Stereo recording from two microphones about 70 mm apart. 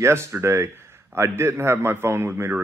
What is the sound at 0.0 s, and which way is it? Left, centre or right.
Speech, right.